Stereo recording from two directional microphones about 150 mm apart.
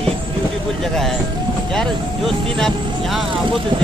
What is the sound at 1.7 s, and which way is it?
Speech, centre (ahead or behind).